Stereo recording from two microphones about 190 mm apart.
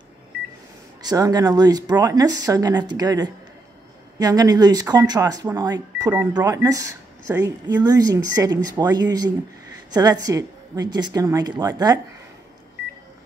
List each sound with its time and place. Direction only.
1.0 s speech: 20° right (ahead or behind)